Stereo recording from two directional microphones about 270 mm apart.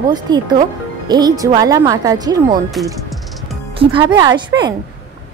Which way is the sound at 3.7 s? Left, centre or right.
Centre.